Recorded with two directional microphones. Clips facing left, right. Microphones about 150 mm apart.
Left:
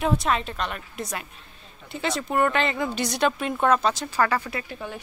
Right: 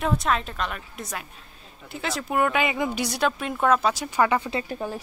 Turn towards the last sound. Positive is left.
turn(degrees=-35)  # may be behind; listen again after turning